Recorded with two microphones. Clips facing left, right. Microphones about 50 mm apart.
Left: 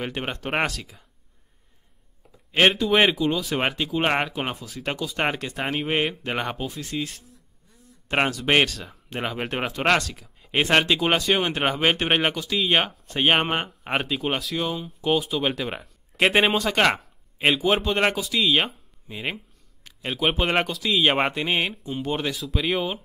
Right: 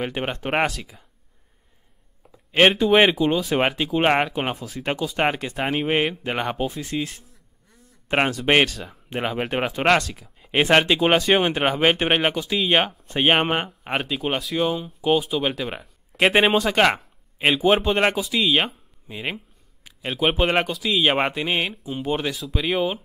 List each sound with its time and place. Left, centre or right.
0.0 s speech: centre
2.5 s speech: centre
6.6 s speech: right
8.1 s speech: centre
11.5 s speech: centre